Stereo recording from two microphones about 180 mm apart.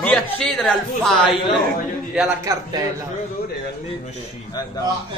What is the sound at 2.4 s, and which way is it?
Speech, 15° right (ahead or behind).